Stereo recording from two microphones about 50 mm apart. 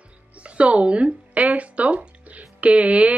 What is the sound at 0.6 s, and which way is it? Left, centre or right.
Speech, right.